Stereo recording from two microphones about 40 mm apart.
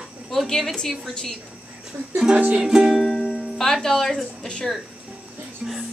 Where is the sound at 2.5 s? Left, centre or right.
Centre.